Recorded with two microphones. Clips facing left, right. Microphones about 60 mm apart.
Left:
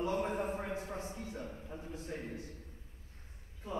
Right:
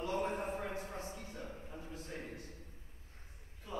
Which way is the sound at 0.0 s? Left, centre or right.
Left.